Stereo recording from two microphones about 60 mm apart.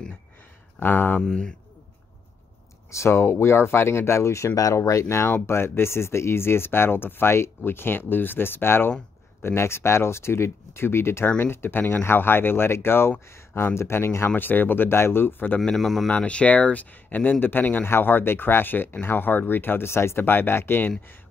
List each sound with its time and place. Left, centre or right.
0.7 s speech: left
1.2 s speech: centre
2.9 s speech: left
15.7 s speech: centre
16.1 s speech: centre; by 20.9 s left